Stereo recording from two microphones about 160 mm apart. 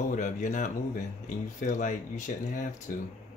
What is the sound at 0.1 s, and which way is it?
Speech, 50° left (ahead or behind).